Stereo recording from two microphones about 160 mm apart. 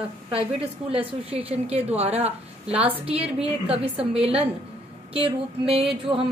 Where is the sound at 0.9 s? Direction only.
35° right (ahead or behind).